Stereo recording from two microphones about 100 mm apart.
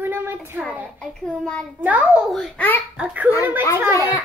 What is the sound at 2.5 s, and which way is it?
Speech, 20° left (ahead or behind).